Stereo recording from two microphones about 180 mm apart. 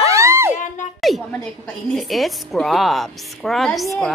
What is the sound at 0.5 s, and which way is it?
Speech, 45° left (ahead or behind).